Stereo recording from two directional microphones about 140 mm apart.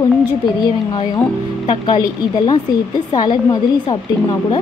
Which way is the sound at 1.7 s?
30° left (ahead or behind).